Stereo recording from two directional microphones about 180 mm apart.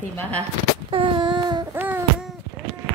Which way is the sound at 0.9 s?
25° right (ahead or behind).